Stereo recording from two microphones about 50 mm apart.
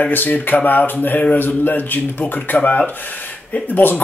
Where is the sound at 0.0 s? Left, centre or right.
Left.